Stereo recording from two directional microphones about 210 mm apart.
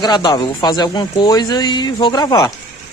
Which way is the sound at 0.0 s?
20° left (ahead or behind).